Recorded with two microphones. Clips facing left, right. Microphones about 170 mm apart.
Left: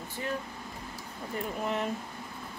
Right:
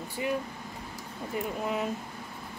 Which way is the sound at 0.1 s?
10° right (ahead or behind).